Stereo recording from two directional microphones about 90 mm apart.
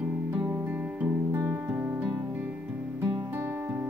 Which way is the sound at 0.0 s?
15° right (ahead or behind).